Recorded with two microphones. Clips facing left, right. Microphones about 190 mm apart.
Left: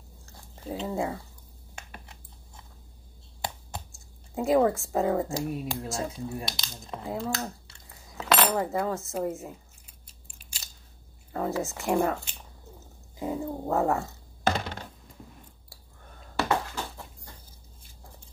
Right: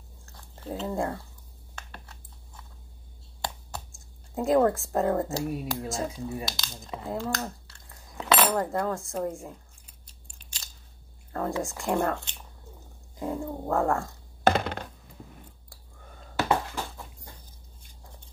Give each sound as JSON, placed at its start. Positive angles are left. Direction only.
{"t": 0.6, "sound": "a woman's voice", "side_deg": 0}
{"t": 4.4, "sound": "a woman's voice", "side_deg": 0}
{"t": 10.0, "sound": "biting", "side_deg": 5}
{"t": 11.3, "sound": "a woman's voice", "side_deg": 5}
{"t": 14.4, "sound": "a sound", "side_deg": -60}